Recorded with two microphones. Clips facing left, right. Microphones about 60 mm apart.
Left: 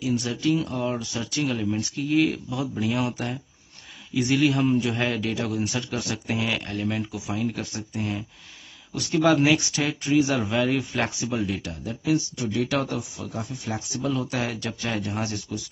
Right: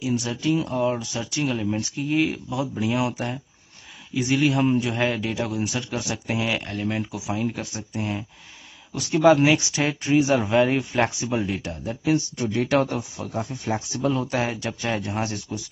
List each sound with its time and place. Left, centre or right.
0.0 s speech: centre
9.8 s speech: right
12.0 s speech: right